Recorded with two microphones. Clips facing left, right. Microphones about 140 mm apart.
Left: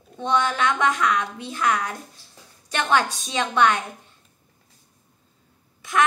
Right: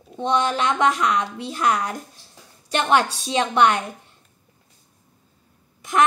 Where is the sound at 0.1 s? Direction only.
25° right (ahead or behind).